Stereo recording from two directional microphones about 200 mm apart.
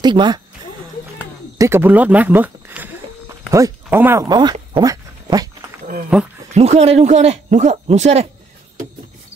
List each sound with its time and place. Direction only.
0.0 s speech: 20° right (ahead or behind)
1.6 s speech: 10° right (ahead or behind)
6.1 s speech: 5° right (ahead or behind)
6.5 s speech: 30° right (ahead or behind)